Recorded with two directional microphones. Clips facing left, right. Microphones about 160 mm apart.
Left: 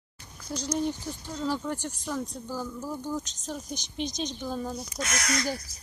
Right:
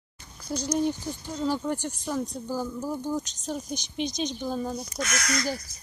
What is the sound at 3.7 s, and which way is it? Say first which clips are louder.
Speech: right 3 dB; centre (ahead or behind).